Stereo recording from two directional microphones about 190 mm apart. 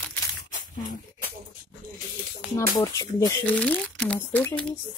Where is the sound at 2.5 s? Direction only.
20° left (ahead or behind).